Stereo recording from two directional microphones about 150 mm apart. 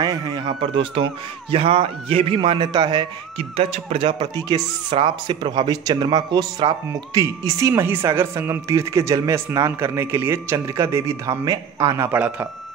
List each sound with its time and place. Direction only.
0.0 s a man's voice: 25° right (ahead or behind)
4.5 s speech: 25° right (ahead or behind)
4.8 s a man's voice: 35° right (ahead or behind)
12.1 s speech: 10° right (ahead or behind)